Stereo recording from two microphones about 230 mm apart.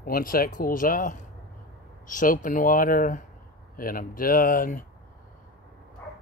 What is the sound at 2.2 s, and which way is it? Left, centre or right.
Speech, left.